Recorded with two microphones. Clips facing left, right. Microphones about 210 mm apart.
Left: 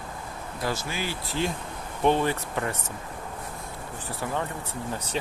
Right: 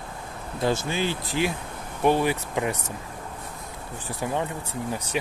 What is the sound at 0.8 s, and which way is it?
Speech, 25° right (ahead or behind).